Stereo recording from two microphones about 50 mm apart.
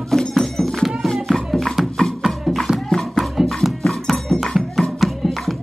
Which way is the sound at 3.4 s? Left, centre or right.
Centre.